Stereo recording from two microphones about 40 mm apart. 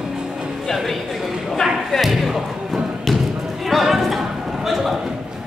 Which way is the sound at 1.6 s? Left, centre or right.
Centre.